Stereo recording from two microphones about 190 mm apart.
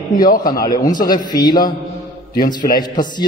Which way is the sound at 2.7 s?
20° left (ahead or behind).